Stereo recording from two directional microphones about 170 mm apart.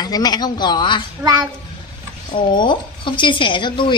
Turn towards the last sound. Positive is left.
turn(degrees=30)  # may be behind; listen again after turning